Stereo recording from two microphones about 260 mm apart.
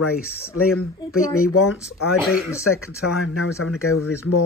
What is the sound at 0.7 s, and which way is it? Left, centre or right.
Speech, left.